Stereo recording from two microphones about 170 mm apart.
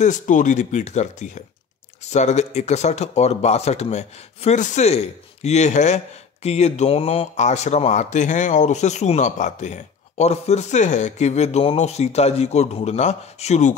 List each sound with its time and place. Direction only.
0.0 s speech: 45° left (ahead or behind)